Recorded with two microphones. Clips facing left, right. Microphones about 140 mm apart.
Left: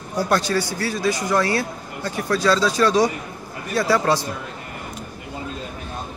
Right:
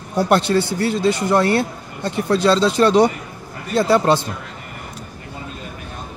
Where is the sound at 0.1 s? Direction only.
25° right (ahead or behind).